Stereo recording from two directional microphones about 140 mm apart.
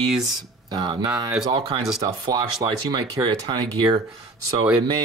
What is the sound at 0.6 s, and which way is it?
Speech, 30° right (ahead or behind).